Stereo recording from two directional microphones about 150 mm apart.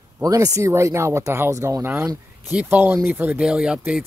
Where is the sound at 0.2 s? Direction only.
25° right (ahead or behind).